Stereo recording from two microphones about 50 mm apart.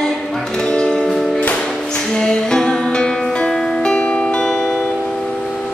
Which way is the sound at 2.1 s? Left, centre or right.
Centre.